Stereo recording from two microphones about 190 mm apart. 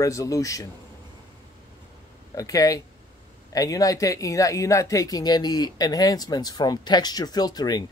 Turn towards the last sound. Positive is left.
turn(degrees=20)  # may be behind; listen again after turning